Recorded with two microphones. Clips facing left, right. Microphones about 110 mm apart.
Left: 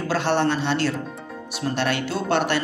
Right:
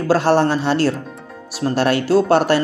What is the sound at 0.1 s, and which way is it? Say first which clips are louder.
Speech: right 7 dB; 40° right (ahead or behind).